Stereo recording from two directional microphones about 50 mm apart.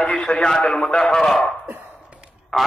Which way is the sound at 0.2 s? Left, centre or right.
Centre.